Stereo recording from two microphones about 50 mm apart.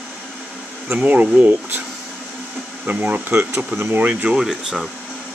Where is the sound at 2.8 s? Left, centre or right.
Right.